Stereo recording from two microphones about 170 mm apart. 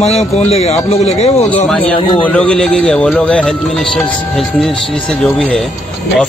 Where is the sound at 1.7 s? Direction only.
10° left (ahead or behind).